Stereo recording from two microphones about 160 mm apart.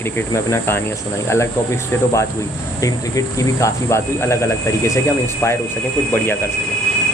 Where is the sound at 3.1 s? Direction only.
20° left (ahead or behind).